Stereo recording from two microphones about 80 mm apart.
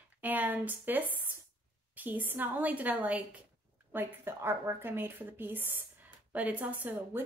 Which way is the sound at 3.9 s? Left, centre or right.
Right.